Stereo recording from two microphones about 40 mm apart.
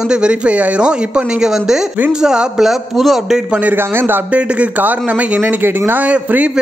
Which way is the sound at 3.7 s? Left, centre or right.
Right.